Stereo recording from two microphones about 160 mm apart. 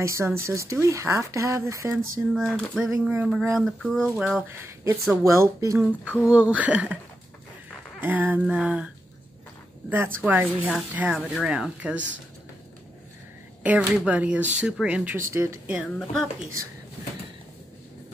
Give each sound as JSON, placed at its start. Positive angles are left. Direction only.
{"t": 0.0, "sound": "speech", "side_deg": -15}
{"t": 2.3, "sound": "speech", "side_deg": 5}
{"t": 5.2, "sound": "speech", "side_deg": -20}
{"t": 6.2, "sound": "speech", "side_deg": -10}
{"t": 8.0, "sound": "speech", "side_deg": -10}
{"t": 13.6, "sound": "speech", "side_deg": -5}
{"t": 16.0, "sound": "speech", "side_deg": 0}